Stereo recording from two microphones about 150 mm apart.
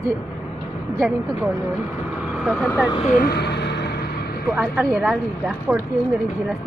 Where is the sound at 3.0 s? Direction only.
55° left (ahead or behind).